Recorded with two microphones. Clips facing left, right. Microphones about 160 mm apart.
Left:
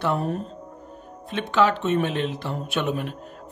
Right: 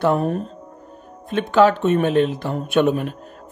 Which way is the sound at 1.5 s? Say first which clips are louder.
Right 6 dB; 50° right (ahead or behind).